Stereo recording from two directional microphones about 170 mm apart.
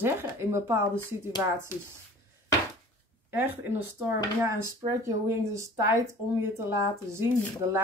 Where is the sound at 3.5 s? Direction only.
10° right (ahead or behind).